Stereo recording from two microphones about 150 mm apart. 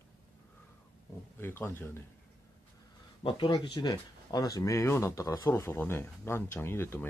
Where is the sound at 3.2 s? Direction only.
35° left (ahead or behind).